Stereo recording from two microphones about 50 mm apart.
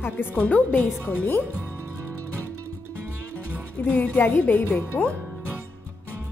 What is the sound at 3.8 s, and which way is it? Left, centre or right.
A woman's voice, left.